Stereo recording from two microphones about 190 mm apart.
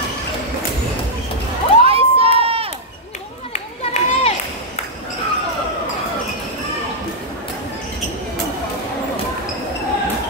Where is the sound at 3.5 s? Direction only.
35° left (ahead or behind).